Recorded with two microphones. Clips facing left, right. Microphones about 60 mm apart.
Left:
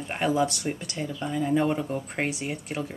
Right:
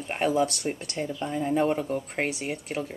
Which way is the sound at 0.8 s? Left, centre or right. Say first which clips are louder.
Right 1 dB; right.